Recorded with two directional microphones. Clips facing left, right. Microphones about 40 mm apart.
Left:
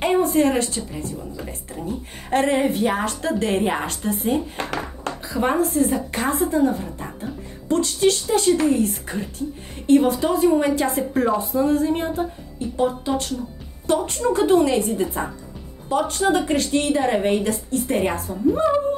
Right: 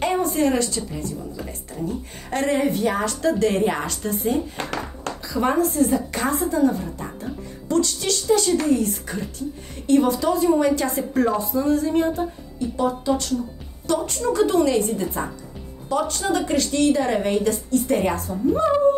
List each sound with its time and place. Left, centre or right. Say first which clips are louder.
0.0 s a woman's voice: left 3 dB; left